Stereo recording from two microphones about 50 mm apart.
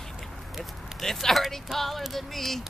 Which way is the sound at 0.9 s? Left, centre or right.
Centre.